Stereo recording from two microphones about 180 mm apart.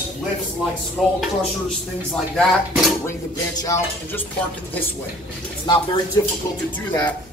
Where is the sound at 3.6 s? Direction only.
20° left (ahead or behind).